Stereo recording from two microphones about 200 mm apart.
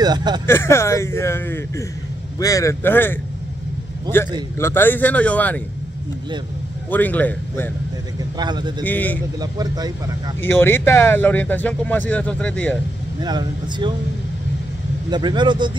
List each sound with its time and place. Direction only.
0.0 s speech: 20° right (ahead or behind)
0.5 s speech: 15° left (ahead or behind)
4.6 s speech: 10° left (ahead or behind)
6.9 s speech: 10° left (ahead or behind)
8.4 s speech: 20° right (ahead or behind)
8.8 s speech: 10° left (ahead or behind)
9.4 s speech: 20° right (ahead or behind)
10.4 s speech: 10° left (ahead or behind)
13.2 s speech: 20° right (ahead or behind)
15.0 s speech: 20° right (ahead or behind)